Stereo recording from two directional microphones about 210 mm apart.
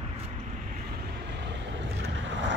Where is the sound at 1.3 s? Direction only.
55° right (ahead or behind).